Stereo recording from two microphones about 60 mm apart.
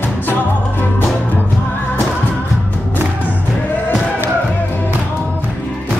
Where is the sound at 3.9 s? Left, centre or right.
Left.